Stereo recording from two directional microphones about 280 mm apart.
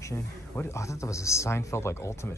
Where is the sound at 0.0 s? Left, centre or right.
Centre.